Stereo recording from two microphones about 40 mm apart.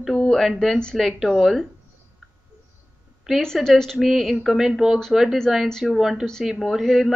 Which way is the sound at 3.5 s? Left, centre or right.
Centre.